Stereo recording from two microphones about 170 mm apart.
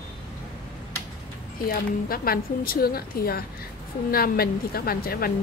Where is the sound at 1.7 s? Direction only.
60° left (ahead or behind).